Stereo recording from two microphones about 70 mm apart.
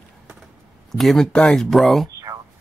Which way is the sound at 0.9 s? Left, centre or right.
Centre.